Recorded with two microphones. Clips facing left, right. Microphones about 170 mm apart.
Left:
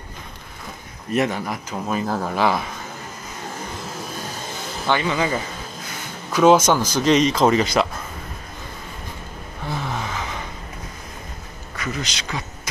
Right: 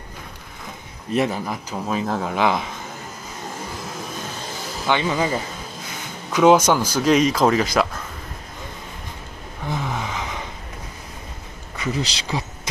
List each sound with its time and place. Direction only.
1.1 s speech: centre (ahead or behind)
2.3 s speech: 15° right (ahead or behind)
4.9 s speech: 10° right (ahead or behind)
6.4 s speech: 15° right (ahead or behind)
9.7 s vehicle: 10° right (ahead or behind)
11.8 s speech: 30° right (ahead or behind)